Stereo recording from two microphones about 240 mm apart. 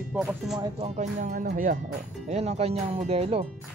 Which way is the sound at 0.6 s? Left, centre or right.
Right.